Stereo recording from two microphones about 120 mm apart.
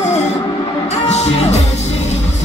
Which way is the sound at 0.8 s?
65° left (ahead or behind).